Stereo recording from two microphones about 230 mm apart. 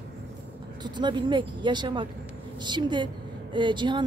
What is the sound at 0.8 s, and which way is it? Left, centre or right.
A woman's voice, centre.